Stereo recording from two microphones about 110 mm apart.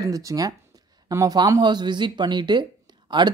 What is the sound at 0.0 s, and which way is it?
Speech, 30° right (ahead or behind).